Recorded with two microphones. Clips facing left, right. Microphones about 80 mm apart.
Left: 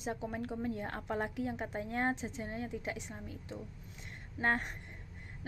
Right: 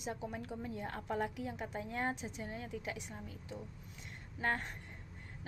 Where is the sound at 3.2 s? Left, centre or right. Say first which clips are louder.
Left 2 dB; left.